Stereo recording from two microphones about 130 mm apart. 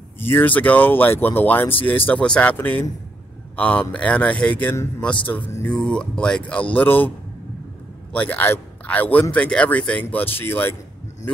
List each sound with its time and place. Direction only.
0.2 s a man's voice: 15° left (ahead or behind)
8.1 s a man's voice: 10° left (ahead or behind)